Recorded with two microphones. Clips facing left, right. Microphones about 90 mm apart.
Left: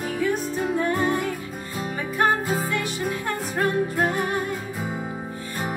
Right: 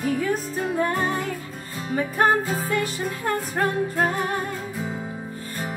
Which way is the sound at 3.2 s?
40° right (ahead or behind).